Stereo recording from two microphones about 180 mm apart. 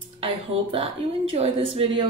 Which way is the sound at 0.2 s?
30° right (ahead or behind).